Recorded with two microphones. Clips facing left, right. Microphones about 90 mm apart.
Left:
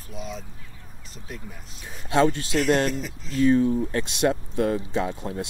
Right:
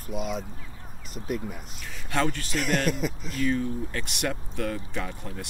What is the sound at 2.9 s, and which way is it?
Speech, 55° right (ahead or behind).